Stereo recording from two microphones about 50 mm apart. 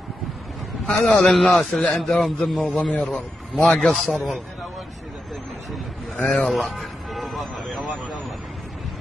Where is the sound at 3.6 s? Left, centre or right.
Centre.